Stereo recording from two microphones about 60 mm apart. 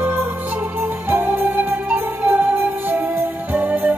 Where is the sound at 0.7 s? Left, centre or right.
Right.